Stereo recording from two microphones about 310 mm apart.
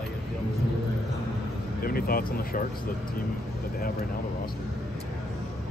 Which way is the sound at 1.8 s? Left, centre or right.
Left.